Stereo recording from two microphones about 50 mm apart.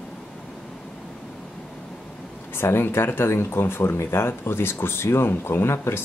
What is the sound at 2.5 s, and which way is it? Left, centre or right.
Speech, left.